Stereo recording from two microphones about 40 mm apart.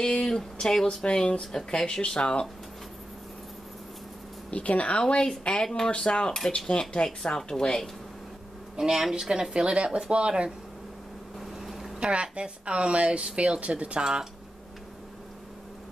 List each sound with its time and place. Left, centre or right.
0.0 s speech: centre
1.4 s speech: centre
4.5 s speech: left
5.0 s a woman's voice: centre
5.4 s a woman's voice: left; by 7.9 s centre
8.7 s speech: centre
11.3 s a sound: centre
12.0 s speech: right